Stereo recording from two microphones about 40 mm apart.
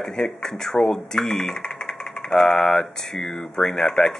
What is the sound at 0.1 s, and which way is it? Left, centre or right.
Speech, centre.